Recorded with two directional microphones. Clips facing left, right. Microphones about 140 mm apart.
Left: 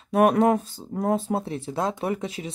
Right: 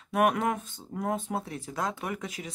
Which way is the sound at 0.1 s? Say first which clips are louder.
Left 7 dB; 35° left (ahead or behind).